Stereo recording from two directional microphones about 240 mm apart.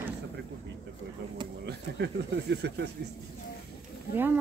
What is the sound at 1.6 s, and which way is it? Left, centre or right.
Speech, right.